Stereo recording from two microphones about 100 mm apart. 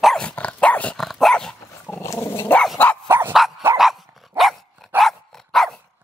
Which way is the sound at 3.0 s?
25° right (ahead or behind).